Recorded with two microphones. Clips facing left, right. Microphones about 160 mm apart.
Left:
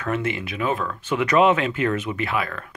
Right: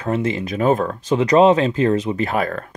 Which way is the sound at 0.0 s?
35° right (ahead or behind).